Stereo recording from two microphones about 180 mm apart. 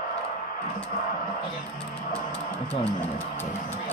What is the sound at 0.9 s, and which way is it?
Music, 50° left (ahead or behind).